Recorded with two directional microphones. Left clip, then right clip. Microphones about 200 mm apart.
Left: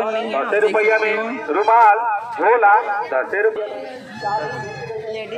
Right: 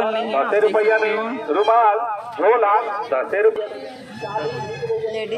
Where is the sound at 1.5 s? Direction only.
15° right (ahead or behind).